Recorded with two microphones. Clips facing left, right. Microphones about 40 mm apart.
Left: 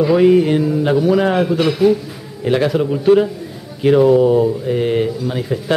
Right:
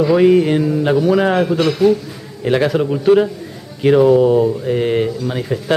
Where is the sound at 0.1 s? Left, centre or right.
Centre.